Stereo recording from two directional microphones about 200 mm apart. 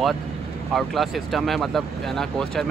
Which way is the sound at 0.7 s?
Centre (ahead or behind).